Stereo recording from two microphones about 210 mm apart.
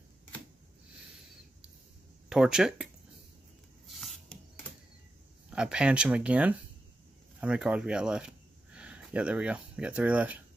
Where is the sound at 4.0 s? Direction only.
5° left (ahead or behind).